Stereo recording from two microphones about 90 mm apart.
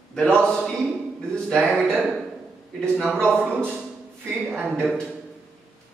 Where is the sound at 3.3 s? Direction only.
20° right (ahead or behind).